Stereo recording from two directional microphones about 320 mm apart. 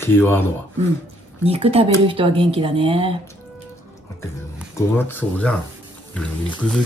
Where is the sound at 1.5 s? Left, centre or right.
Centre.